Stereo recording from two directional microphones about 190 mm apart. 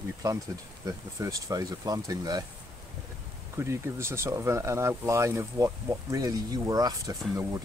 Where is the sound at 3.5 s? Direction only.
15° right (ahead or behind).